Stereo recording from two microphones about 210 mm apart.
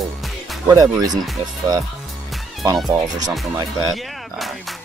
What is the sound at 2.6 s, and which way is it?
Speech, 20° right (ahead or behind).